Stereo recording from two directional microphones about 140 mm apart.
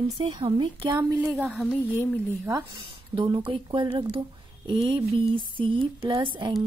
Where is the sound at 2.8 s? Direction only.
35° right (ahead or behind).